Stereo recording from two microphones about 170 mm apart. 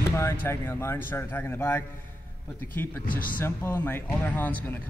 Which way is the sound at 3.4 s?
15° left (ahead or behind).